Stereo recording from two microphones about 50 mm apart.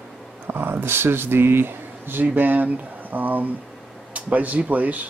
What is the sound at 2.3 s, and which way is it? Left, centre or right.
Speech, right.